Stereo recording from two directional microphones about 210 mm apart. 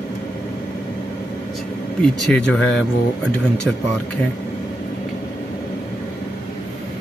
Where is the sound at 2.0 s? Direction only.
5° left (ahead or behind).